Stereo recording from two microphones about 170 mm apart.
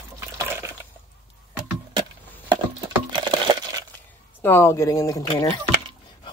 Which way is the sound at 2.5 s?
30° right (ahead or behind).